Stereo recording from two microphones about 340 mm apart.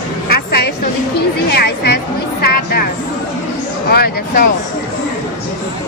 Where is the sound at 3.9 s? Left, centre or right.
Left.